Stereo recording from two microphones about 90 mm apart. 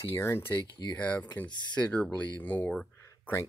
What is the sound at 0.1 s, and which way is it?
Speech, 30° left (ahead or behind).